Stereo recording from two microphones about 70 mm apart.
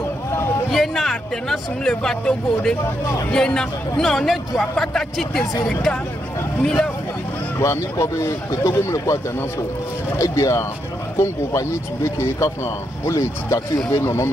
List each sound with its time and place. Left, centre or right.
0.7 s speech: centre
7.5 s speech: left
12.2 s speech: left